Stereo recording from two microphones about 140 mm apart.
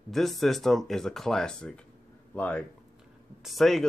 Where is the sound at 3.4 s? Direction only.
Centre (ahead or behind).